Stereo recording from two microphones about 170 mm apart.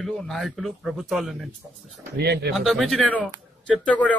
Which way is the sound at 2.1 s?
75° right (ahead or behind).